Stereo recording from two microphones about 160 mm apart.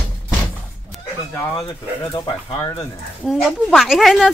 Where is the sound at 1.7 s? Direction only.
30° left (ahead or behind).